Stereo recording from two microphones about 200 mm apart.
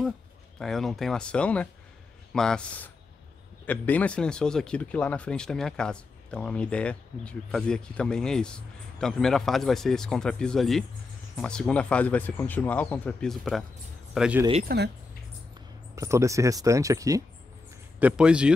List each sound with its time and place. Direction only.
0.6 s speech: centre (ahead or behind)
14.7 s speech: 50° right (ahead or behind)
16.0 s speech: 15° right (ahead or behind)